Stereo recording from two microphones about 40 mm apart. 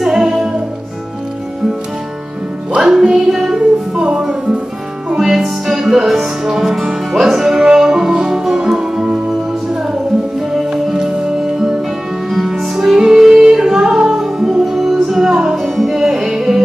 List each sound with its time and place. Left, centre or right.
0.0 s music: centre
3.1 s music: centre
10.7 s music: centre
12.3 s music: centre